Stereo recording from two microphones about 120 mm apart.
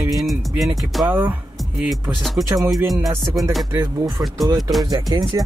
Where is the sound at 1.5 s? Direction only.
Centre (ahead or behind).